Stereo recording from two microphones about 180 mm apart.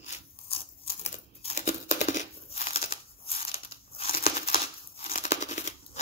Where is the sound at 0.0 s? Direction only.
35° left (ahead or behind).